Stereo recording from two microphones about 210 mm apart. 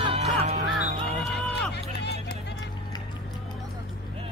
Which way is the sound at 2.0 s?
55° left (ahead or behind).